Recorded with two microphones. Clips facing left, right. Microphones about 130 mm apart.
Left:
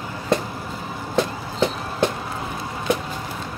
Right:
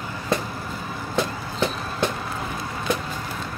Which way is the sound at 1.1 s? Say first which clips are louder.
Left 3 dB; 25° left (ahead or behind).